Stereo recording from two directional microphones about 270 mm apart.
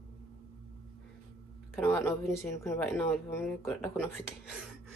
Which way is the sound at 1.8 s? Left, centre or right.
Centre.